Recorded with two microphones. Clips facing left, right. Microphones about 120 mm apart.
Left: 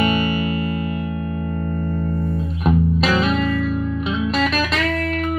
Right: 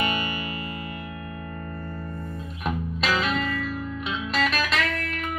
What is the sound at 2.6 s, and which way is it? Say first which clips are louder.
Music: left 9 dB; 35° left (ahead or behind).